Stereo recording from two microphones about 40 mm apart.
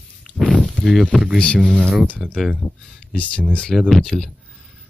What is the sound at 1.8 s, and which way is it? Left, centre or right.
Speech, centre.